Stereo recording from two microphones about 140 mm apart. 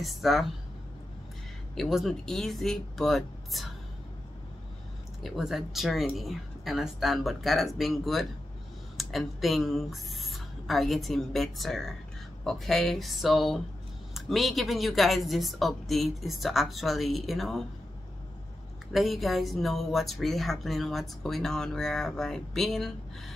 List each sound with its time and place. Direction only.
0.0 s a woman's voice: centre (ahead or behind)
1.8 s a woman's voice: centre (ahead or behind)
5.2 s a woman's voice: centre (ahead or behind)
18.9 s a woman's voice: centre (ahead or behind)